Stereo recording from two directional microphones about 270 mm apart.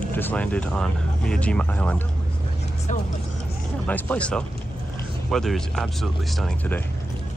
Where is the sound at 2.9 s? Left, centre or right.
Left.